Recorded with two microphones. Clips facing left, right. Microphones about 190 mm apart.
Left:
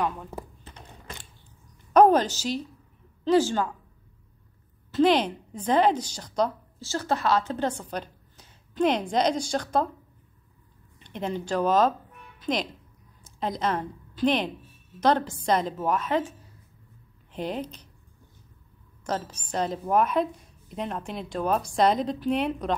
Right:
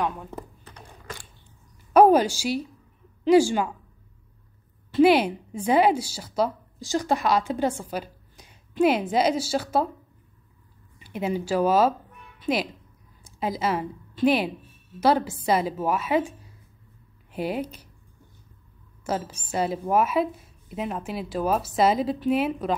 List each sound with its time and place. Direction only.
0.0 s a woman's voice: centre (ahead or behind)
0.7 s typing: 25° left (ahead or behind)
2.0 s a woman's voice: 10° right (ahead or behind)
4.9 s a woman's voice: 10° right (ahead or behind)
11.0 s a woman's voice: 5° right (ahead or behind)
19.0 s a woman's voice: 10° right (ahead or behind)